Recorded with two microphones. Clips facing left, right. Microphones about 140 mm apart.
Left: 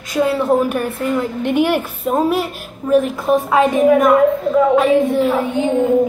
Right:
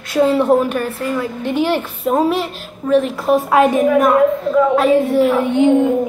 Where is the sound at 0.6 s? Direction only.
10° left (ahead or behind).